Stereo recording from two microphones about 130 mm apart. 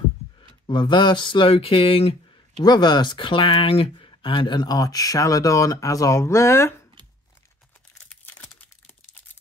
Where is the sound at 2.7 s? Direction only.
35° left (ahead or behind).